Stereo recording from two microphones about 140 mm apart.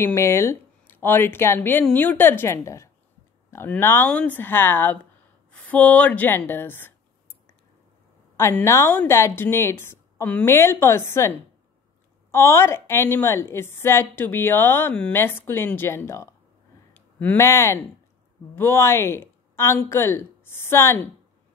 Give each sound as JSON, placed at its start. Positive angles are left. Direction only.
{"t": 0.0, "sound": "a woman's voice", "side_deg": 20}
{"t": 8.4, "sound": "a woman's voice", "side_deg": 20}